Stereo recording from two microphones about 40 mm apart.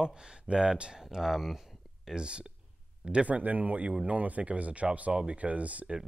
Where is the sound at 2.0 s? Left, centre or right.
Right.